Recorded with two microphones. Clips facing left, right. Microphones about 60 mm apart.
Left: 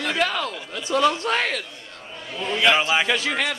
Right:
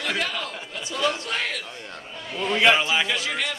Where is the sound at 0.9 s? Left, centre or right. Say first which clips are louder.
Left 6 dB; left.